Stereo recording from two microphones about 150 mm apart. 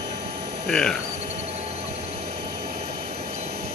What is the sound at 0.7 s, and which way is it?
Speech, 5° left (ahead or behind).